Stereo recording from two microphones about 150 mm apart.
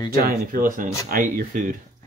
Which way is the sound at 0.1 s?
70° right (ahead or behind).